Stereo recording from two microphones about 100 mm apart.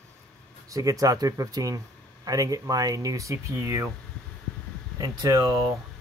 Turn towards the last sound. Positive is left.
turn(degrees=-40)  # may be behind; listen again after turning